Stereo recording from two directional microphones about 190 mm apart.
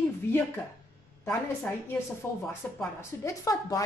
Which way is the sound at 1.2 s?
10° left (ahead or behind).